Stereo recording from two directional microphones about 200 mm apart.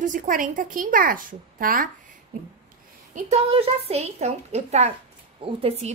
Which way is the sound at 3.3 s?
30° right (ahead or behind).